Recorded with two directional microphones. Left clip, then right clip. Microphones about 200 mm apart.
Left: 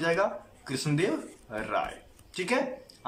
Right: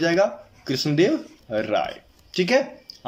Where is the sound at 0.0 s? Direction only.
30° right (ahead or behind).